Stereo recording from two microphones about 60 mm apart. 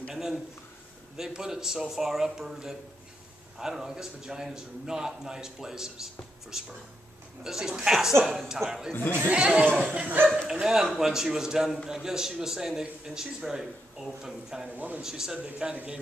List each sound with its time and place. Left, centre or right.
0.1 s a man's voice: centre
8.9 s speech: left
9.3 s a man's voice: centre
10.4 s a man's voice: centre
15.3 s a man's voice: right